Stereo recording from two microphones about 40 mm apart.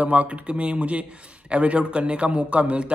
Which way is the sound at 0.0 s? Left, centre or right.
Right.